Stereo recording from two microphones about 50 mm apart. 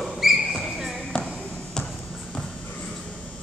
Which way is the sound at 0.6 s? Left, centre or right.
Centre.